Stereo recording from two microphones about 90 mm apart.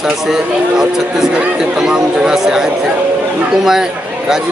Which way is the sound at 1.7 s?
5° right (ahead or behind).